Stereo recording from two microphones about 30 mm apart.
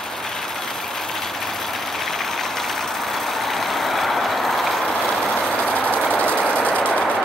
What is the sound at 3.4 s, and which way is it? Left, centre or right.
Vehicle, centre.